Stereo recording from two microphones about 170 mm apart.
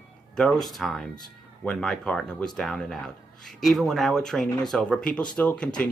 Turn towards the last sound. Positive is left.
turn(degrees=10)  # may be behind; listen again after turning